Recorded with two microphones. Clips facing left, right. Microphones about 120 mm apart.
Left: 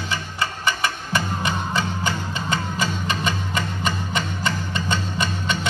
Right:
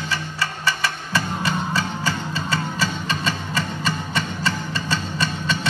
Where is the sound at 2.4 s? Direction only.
20° left (ahead or behind).